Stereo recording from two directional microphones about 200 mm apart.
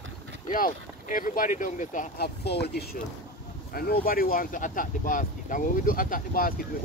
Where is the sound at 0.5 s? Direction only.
40° left (ahead or behind).